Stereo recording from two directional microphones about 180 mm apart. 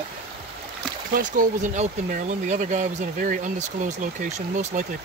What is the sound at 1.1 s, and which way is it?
Speech, 45° right (ahead or behind).